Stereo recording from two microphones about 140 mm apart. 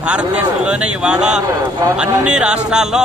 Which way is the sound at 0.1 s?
10° right (ahead or behind).